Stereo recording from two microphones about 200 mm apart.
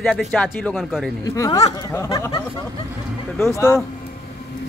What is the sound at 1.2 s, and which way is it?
Speech, 15° left (ahead or behind).